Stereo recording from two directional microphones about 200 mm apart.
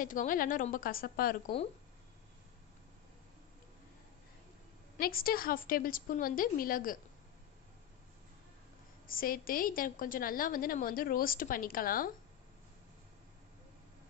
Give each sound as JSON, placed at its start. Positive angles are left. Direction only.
{"t": 0.0, "sound": "a woman's voice", "side_deg": 40}
{"t": 4.9, "sound": "a woman's voice", "side_deg": 45}
{"t": 9.0, "sound": "a woman's voice", "side_deg": 45}